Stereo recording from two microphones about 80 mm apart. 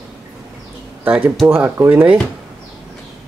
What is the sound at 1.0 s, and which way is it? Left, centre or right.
Speech, centre.